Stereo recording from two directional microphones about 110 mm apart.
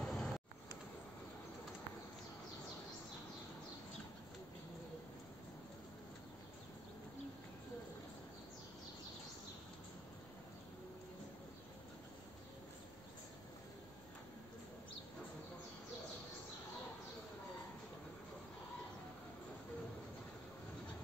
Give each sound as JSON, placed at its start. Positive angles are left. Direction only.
{"t": 0.0, "sound": "vehicle", "side_deg": 5}